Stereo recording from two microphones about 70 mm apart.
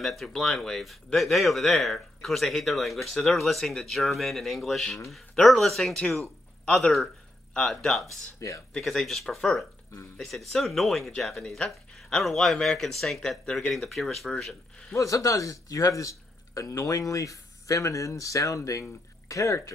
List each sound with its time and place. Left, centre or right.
0.0 s a man's voice: centre
8.4 s speech: left
8.7 s a man's voice: centre
15.0 s speech: left